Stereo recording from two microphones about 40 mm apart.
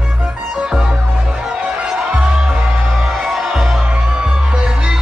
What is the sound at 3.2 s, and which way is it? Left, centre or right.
Music, centre.